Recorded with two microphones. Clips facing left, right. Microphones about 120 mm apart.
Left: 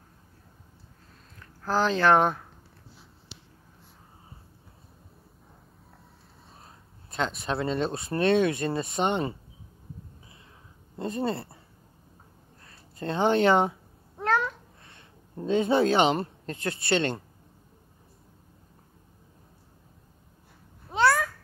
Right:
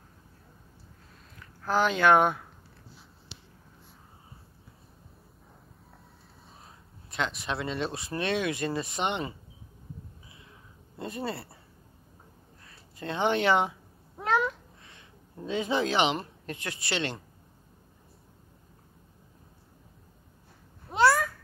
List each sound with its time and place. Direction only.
1.7 s speech: 35° left (ahead or behind)
7.1 s speech: 40° left (ahead or behind)
11.0 s speech: 30° left (ahead or behind)
12.6 s speech: 35° left (ahead or behind)
14.1 s cat: 5° right (ahead or behind)
15.4 s speech: 45° left (ahead or behind)
16.9 s speech: 45° left (ahead or behind)
20.9 s babbling: centre (ahead or behind)